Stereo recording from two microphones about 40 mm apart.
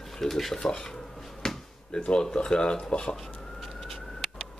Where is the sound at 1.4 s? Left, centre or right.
Centre.